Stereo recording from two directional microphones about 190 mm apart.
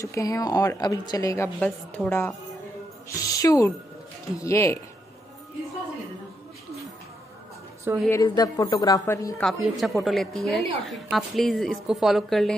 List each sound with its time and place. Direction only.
0.0 s a woman's voice: 15° left (ahead or behind)
8.1 s a woman's voice: 20° left (ahead or behind)
9.4 s a woman's voice: centre (ahead or behind)